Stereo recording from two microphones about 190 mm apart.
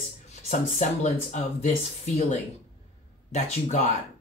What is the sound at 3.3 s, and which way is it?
Speech, 35° left (ahead or behind).